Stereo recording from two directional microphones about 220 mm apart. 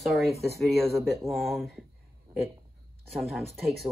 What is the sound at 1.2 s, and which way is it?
Speech, centre (ahead or behind).